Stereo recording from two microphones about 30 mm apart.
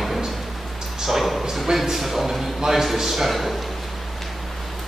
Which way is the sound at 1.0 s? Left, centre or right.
Centre.